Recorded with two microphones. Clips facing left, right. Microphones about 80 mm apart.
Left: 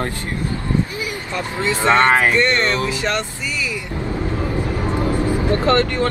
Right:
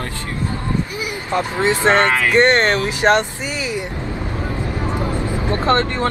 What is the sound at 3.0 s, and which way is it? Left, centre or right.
Speech, right.